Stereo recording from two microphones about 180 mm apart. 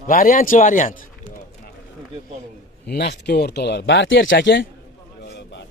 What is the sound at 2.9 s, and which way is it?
Speech, 65° left (ahead or behind).